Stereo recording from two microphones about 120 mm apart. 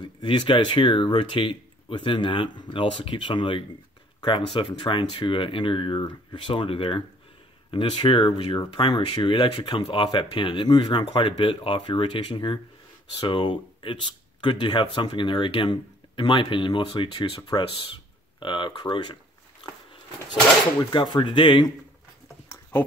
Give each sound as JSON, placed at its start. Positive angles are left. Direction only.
{"t": 0.0, "sound": "speech", "side_deg": 40}
{"t": 20.9, "sound": "speech", "side_deg": 40}
{"t": 22.5, "sound": "a sound", "side_deg": 20}